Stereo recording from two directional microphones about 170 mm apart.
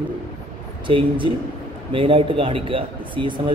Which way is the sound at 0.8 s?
30° right (ahead or behind).